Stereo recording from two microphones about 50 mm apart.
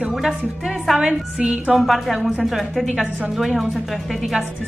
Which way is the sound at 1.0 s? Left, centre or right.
Right.